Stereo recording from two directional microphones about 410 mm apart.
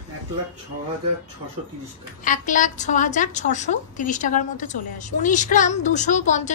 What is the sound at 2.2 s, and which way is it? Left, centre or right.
A woman's voice, centre.